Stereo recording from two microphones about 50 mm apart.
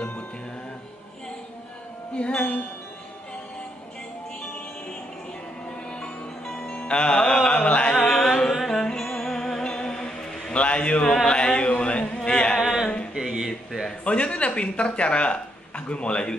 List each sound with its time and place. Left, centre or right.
2.1 s speech: left
5.7 s music: centre
6.8 s music: left
7.3 s a sound: centre
7.9 s music: centre
9.7 s mantra: centre
11.2 s a sound: centre
12.5 s a sound: centre
14.0 s speech: left